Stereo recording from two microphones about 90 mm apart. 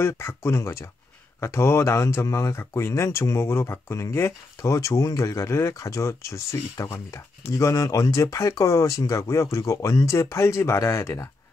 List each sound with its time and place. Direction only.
0.0 s speech: 25° left (ahead or behind)